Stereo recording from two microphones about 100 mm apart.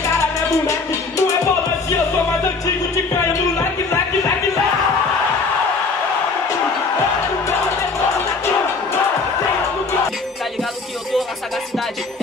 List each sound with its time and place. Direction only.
0.2 s music: 30° left (ahead or behind)